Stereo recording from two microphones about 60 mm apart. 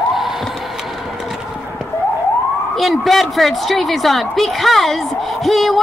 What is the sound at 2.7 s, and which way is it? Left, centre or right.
A woman's voice, centre.